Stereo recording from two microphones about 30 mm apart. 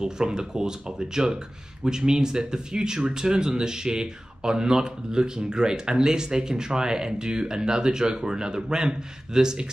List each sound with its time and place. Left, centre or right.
0.0 s speech: right